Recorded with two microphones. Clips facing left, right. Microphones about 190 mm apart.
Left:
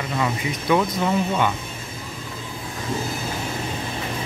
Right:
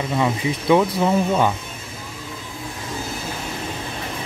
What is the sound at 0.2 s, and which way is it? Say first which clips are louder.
Speech: right 2 dB; 20° right (ahead or behind).